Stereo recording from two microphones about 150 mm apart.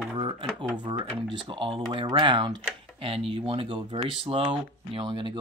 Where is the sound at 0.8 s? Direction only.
30° right (ahead or behind).